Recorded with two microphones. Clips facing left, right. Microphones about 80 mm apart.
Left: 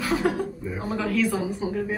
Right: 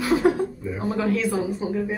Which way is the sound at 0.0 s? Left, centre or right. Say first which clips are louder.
Right 4 dB; centre.